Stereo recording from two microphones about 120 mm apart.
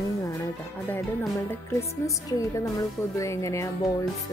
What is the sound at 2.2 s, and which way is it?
Speech, 30° left (ahead or behind).